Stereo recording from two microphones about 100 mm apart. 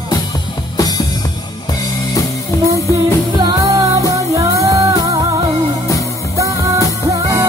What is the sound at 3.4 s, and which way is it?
Music, 40° right (ahead or behind).